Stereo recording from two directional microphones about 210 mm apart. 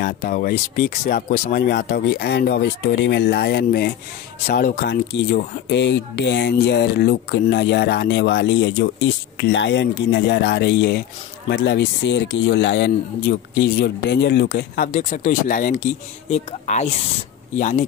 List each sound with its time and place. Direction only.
0.0 s speech: 40° left (ahead or behind)